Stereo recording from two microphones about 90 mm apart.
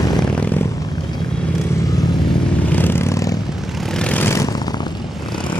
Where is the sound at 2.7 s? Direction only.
20° left (ahead or behind).